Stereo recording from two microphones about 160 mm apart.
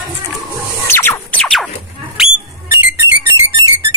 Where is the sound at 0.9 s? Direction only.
15° left (ahead or behind); by 2.3 s 5° right (ahead or behind).